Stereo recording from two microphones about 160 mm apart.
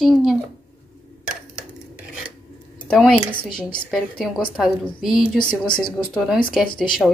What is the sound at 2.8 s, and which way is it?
A woman's voice, 5° left (ahead or behind).